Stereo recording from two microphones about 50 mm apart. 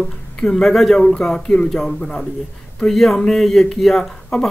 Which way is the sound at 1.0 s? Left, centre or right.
Centre.